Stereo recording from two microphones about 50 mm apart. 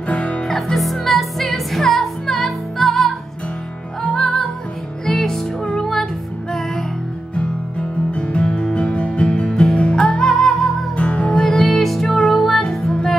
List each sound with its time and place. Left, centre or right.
0.5 s music: centre
8.1 s music: left
11.0 s music: left
11.4 s music: centre